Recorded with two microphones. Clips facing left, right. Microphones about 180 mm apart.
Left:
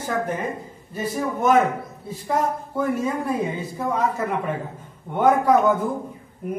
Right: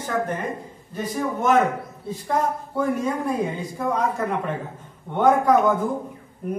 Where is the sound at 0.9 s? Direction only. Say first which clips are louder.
Even; 10° left (ahead or behind).